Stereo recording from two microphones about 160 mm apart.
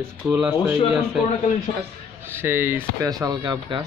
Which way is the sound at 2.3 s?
15° right (ahead or behind).